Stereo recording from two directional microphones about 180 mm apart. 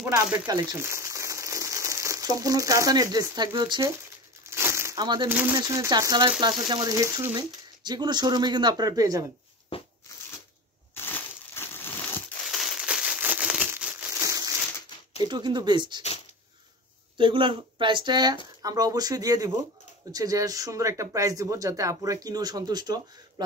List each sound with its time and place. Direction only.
0.0 s speech: 15° right (ahead or behind)
4.5 s crumpling: 15° right (ahead or behind)
5.3 s speech: 10° right (ahead or behind)
5.6 s speech: 20° right (ahead or behind)
9.7 s a sound: 30° left (ahead or behind)
11.0 s crushing: 10° left (ahead or behind)
12.4 s a sound: centre (ahead or behind)
14.2 s crumpling: 20° right (ahead or behind)
15.2 s speech: 25° right (ahead or behind)
17.2 s speech: 25° right (ahead or behind)